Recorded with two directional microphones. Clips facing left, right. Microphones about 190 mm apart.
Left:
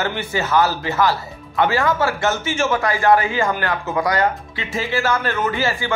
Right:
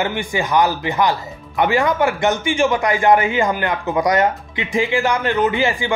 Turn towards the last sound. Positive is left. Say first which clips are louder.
# right 4 dB
turn(degrees=-15)  # may be behind; listen again after turning